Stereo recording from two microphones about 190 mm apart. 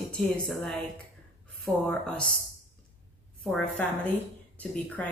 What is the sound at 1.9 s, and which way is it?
Speech, 5° left (ahead or behind).